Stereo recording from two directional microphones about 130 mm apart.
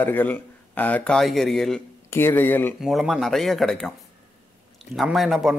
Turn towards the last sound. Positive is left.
turn(degrees=0)  # may be behind; listen again after turning